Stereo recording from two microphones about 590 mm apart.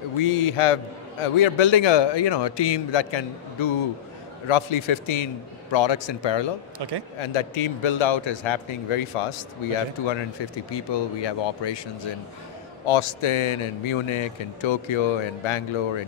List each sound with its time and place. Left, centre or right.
0.2 s a man's voice: left
6.8 s speech: right
7.2 s a man's voice: left
10.0 s a man's voice: left
12.8 s a man's voice: left